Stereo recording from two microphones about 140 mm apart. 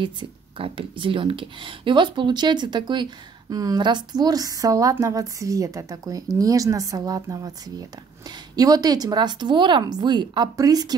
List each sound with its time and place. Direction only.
0.0 s speech: 35° right (ahead or behind)